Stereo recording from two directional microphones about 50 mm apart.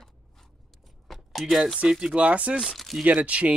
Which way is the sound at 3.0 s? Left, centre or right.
Right.